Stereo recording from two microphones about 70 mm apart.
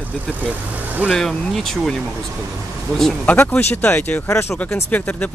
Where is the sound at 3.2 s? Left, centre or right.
Left.